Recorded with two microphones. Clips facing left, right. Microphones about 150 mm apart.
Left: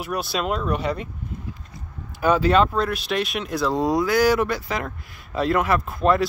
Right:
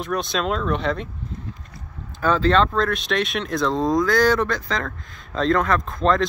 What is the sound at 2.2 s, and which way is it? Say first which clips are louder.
Speech: even; 10° left (ahead or behind).